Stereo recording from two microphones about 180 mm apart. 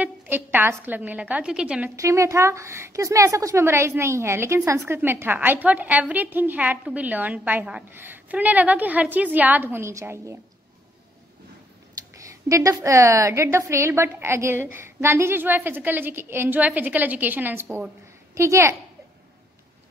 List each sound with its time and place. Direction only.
0.0 s a sound: 10° right (ahead or behind)
0.8 s a woman's voice: 10° right (ahead or behind)
2.0 s a woman's voice: 15° right (ahead or behind)
11.9 s a woman's voice: 20° right (ahead or behind)